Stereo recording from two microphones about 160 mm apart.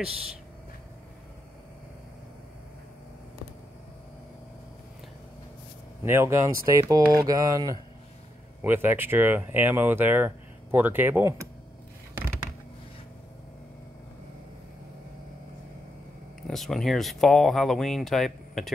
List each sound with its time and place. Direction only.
6.0 s speech: 15° right (ahead or behind)
16.4 s speech: centre (ahead or behind)